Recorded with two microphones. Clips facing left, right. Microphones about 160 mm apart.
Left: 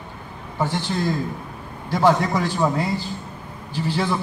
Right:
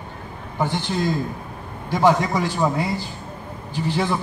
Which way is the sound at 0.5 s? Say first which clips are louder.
Even; 15° right (ahead or behind).